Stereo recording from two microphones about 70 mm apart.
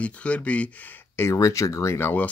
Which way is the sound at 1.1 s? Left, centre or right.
Left.